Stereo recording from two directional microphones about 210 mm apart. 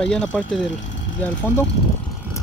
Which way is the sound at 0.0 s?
5° left (ahead or behind).